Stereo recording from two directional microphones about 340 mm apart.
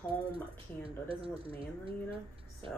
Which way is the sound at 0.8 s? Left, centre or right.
Centre.